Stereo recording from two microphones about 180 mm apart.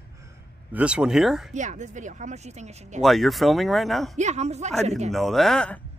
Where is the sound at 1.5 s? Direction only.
40° right (ahead or behind).